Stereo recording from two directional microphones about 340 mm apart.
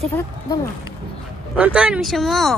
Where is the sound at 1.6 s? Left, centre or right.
Centre.